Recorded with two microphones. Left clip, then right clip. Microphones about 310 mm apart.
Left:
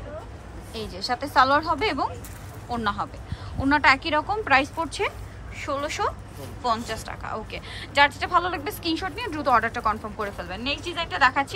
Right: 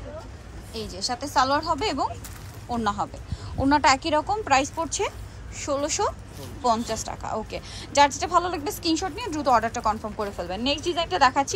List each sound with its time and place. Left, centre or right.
0.7 s a woman's voice: centre